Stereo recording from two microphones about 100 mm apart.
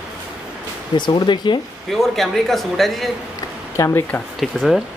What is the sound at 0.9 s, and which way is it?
Speech, 50° left (ahead or behind).